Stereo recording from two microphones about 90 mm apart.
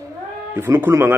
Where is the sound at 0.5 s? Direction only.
25° right (ahead or behind).